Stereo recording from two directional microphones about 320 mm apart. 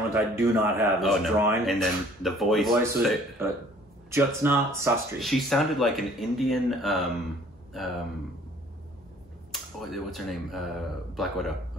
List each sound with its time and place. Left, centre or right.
0.1 s speech: centre
9.5 s speech: centre